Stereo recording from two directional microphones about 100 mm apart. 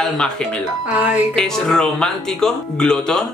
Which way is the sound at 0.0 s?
5° left (ahead or behind).